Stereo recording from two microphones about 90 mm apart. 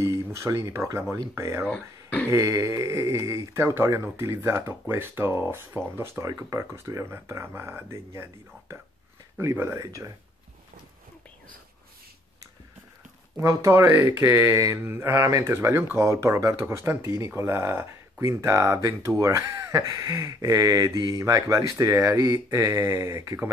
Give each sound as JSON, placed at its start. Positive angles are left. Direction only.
{"t": 0.0, "sound": "speech", "side_deg": -35}
{"t": 13.4, "sound": "speech", "side_deg": -35}